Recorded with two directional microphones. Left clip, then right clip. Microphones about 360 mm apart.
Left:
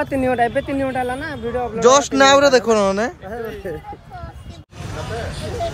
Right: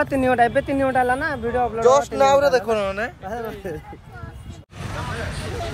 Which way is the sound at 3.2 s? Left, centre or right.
Centre.